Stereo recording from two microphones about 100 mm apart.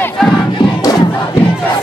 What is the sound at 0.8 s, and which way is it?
Crowd, 40° left (ahead or behind).